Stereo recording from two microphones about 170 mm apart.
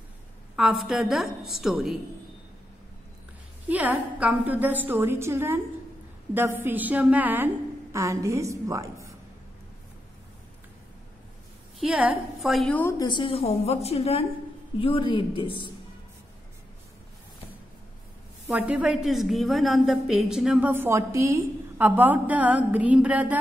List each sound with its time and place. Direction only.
0.6 s a woman's voice: 5° right (ahead or behind)
3.6 s a woman's voice: 10° right (ahead or behind)
11.8 s a woman's voice: 5° right (ahead or behind)
13.0 s a woman's voice: 30° left (ahead or behind)
18.5 s a woman's voice: 10° right (ahead or behind)